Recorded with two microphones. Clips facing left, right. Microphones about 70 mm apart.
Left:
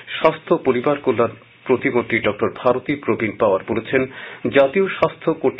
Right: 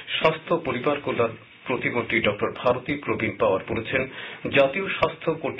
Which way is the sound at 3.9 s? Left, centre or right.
Left.